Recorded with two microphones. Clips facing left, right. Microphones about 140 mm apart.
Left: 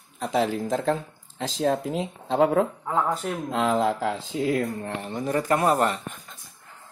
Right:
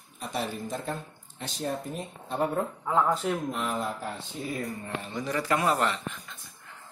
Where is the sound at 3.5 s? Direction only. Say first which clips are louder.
Left 8 dB; 90° left; by 6.1 s 45° left (ahead or behind).